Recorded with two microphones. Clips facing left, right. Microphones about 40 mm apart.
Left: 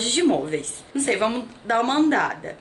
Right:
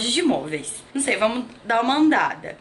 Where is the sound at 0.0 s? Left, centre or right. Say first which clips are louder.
Left 1 dB; centre.